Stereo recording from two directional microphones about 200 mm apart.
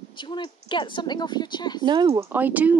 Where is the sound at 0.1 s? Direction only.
25° left (ahead or behind).